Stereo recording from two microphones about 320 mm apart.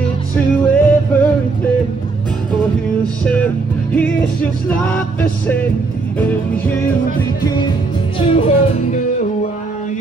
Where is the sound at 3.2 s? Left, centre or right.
Centre.